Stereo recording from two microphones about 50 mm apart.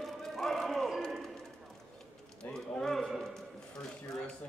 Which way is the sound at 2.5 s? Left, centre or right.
Centre.